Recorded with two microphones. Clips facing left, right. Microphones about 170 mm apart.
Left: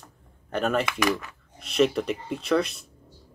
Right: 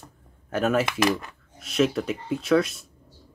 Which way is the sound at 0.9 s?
30° right (ahead or behind).